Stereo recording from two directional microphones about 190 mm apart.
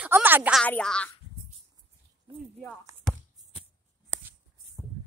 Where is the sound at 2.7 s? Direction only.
Centre (ahead or behind).